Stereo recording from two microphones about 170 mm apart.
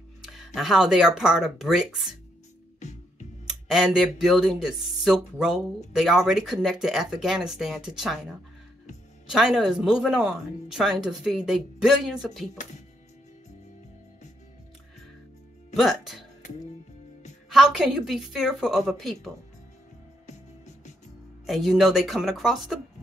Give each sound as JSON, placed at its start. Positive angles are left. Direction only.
{"t": 0.2, "sound": "speech", "side_deg": 0}
{"t": 2.8, "sound": "music", "side_deg": 45}
{"t": 3.4, "sound": "speech", "side_deg": -5}
{"t": 9.3, "sound": "speech", "side_deg": 0}
{"t": 15.7, "sound": "speech", "side_deg": 0}
{"t": 17.5, "sound": "speech", "side_deg": -5}
{"t": 20.2, "sound": "music", "side_deg": 45}
{"t": 21.5, "sound": "speech", "side_deg": 0}